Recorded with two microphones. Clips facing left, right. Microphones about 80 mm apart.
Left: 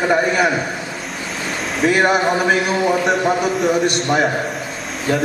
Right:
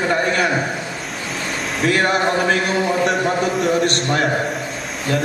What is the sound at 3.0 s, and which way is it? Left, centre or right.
A man's voice, centre.